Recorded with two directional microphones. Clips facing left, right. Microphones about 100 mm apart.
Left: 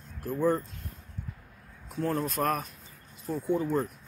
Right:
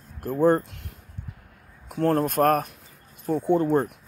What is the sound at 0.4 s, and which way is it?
Speech, 65° right (ahead or behind).